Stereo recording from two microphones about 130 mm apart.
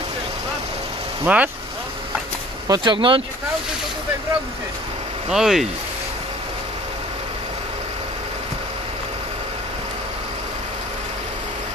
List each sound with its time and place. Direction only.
1.2 s speech: 10° right (ahead or behind)
2.7 s speech: 35° right (ahead or behind)
5.3 s speech: 5° right (ahead or behind)